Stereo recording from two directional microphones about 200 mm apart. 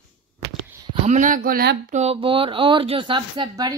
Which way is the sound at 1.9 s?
30° right (ahead or behind).